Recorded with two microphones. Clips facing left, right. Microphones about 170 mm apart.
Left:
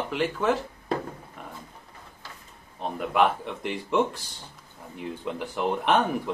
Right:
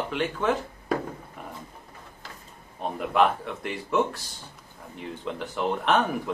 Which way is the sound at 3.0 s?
5° left (ahead or behind).